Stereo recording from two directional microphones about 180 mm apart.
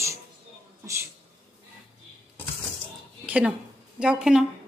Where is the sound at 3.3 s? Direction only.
5° right (ahead or behind).